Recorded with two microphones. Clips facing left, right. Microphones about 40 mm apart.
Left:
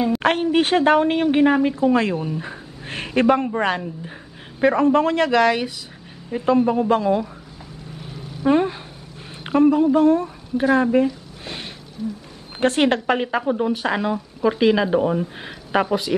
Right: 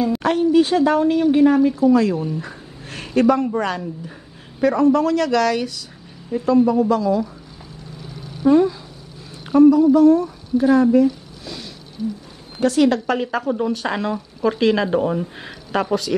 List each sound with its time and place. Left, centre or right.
0.2 s a woman's voice: left
8.5 s speech: left
10.6 s a sound: left
12.5 s speech: left; by 15.5 s centre
15.7 s speech: centre